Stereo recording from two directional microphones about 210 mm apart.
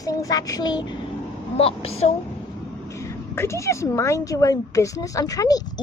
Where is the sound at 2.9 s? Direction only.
15° left (ahead or behind).